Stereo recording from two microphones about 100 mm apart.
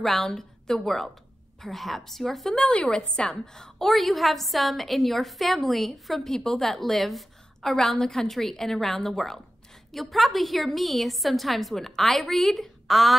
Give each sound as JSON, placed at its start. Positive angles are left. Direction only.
{"t": 0.0, "sound": "a woman's voice", "side_deg": 5}